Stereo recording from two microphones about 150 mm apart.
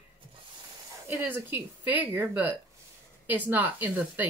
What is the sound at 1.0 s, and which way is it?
A woman's voice, 15° right (ahead or behind).